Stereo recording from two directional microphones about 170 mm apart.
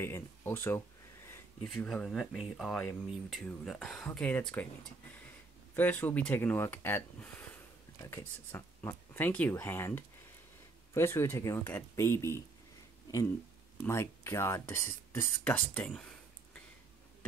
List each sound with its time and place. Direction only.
0.0 s a sound: 15° left (ahead or behind)
1.8 s speech: 5° left (ahead or behind)
5.8 s speech: 10° left (ahead or behind)
13.8 s speech: 15° left (ahead or behind)